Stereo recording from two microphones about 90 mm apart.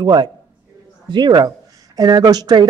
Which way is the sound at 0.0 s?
60° right (ahead or behind).